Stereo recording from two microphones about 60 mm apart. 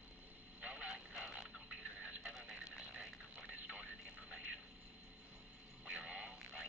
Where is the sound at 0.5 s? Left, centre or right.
Centre.